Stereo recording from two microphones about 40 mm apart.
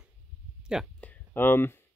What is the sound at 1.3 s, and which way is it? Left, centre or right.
Speech, left.